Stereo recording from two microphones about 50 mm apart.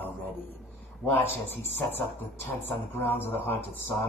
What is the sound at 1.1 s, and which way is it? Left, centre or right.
Speech, left.